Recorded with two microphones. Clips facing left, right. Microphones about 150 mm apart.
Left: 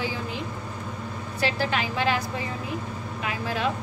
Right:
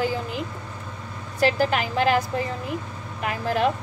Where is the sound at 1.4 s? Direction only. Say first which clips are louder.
Right 5 dB; 45° right (ahead or behind).